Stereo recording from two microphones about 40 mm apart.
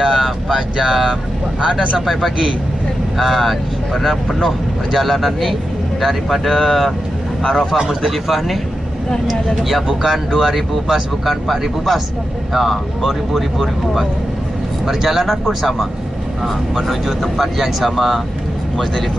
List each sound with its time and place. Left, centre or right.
0.0 s speech: centre
3.2 s speech: centre
7.7 s speech: centre
9.3 s speech: centre
16.8 s speech: centre